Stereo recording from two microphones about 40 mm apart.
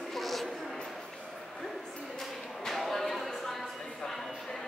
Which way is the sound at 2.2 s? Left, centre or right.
Centre.